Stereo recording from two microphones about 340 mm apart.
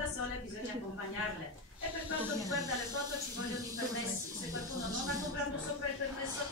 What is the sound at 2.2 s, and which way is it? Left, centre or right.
Speech, centre.